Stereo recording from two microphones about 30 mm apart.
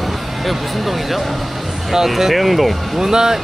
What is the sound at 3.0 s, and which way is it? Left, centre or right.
Speech, centre.